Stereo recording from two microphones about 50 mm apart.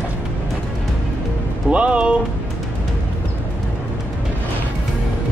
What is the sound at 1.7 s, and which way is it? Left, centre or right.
Music, right.